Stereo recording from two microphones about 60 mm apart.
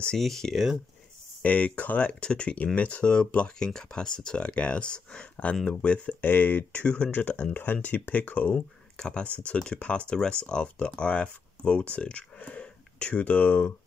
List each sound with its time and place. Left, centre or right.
0.2 s speech: centre
1.4 s speech: left